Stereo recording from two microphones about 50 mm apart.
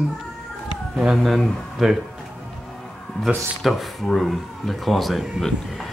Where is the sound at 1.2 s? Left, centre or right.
Centre.